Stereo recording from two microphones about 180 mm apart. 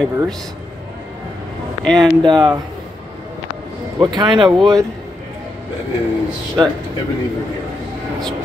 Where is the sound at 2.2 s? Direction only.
25° right (ahead or behind).